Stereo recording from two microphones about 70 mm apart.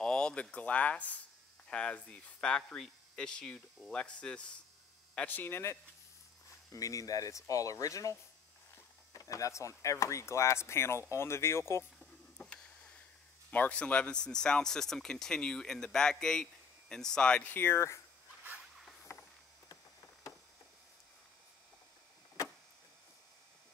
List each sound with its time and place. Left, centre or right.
0.0 s speech: centre; by 5.6 s left
6.7 s speech: left
12.0 s a sound: centre
13.5 s speech: left
17.5 s speech: left